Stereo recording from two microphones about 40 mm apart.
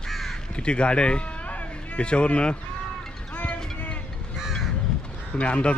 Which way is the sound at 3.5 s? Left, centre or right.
Left.